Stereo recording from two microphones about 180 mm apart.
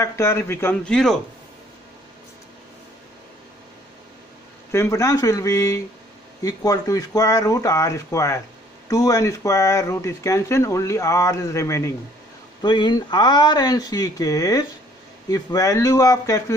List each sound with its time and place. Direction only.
0.0 s speech: 15° left (ahead or behind)
4.7 s speech: 15° left (ahead or behind)